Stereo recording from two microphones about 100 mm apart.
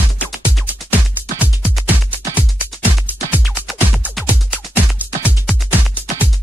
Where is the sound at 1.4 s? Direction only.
15° right (ahead or behind).